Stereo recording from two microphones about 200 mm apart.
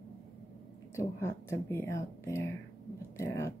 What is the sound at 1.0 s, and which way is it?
Speech, 10° left (ahead or behind).